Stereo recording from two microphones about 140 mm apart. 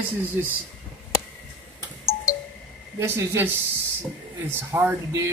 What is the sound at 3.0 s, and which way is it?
Speech, 15° right (ahead or behind).